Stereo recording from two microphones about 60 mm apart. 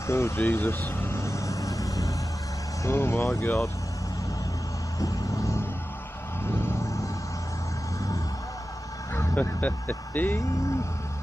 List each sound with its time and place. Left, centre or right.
0.0 s speech: left
0.4 s speech: left
1.1 s vehicle: left
2.9 s speech: left
4.9 s vehicle: left
6.4 s music: left
9.3 s speech: left